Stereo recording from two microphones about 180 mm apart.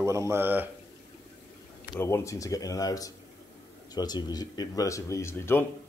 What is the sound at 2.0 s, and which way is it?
Speech, 15° left (ahead or behind).